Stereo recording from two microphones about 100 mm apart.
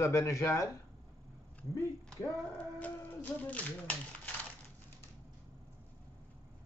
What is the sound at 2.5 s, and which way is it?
Speech, 15° left (ahead or behind).